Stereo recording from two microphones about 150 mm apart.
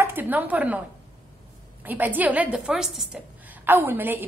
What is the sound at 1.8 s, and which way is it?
A woman's voice, 10° right (ahead or behind).